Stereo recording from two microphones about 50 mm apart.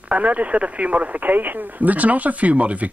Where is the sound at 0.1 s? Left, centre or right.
Right.